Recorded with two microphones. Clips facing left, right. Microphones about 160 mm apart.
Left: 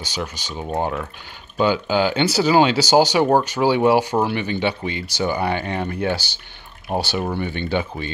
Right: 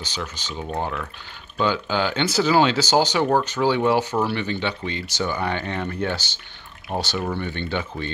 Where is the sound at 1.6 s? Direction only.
10° left (ahead or behind).